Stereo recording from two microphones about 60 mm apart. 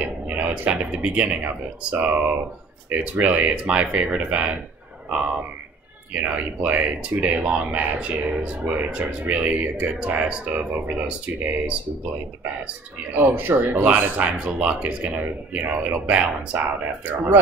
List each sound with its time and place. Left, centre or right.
0.0 s speech: right
2.0 s speech: right
6.1 s speech: right
11.1 s speech: centre
13.1 s speech: right
14.4 s speech: centre